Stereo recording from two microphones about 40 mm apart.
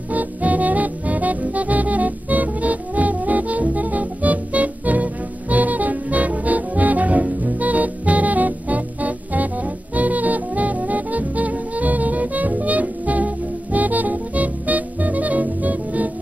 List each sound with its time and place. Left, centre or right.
0.1 s music: right